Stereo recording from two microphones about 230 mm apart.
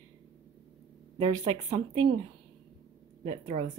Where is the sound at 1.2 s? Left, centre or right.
Centre.